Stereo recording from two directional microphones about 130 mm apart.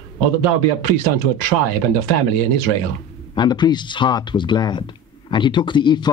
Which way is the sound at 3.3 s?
35° left (ahead or behind).